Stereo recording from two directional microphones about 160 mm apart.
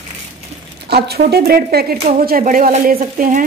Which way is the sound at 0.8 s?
85° right.